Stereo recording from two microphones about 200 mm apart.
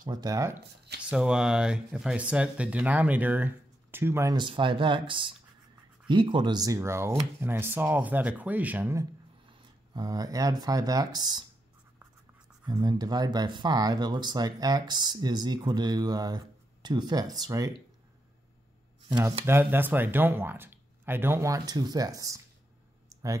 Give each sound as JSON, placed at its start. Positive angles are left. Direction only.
{"t": 0.0, "sound": "speech", "side_deg": -20}
{"t": 1.0, "sound": "speech", "side_deg": -5}
{"t": 12.6, "sound": "speech", "side_deg": -20}
{"t": 19.4, "sound": "speech", "side_deg": -10}